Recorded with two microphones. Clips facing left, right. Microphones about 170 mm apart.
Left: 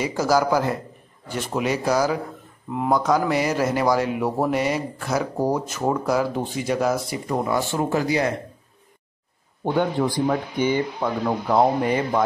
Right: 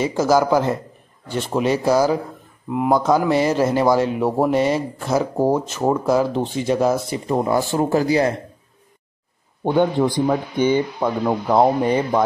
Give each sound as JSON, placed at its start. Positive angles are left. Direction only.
{"t": 0.0, "sound": "speech", "side_deg": -25}
{"t": 2.7, "sound": "speech", "side_deg": -15}
{"t": 9.8, "sound": "speech", "side_deg": -20}